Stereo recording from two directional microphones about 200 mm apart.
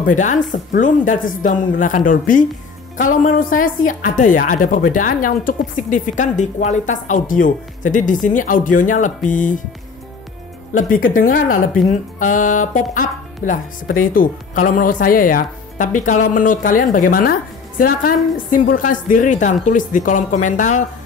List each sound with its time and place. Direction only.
0.0 s speech: 40° left (ahead or behind)
10.7 s speech: 45° left (ahead or behind)